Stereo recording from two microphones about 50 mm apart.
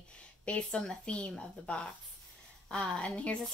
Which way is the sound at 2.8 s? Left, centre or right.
Centre.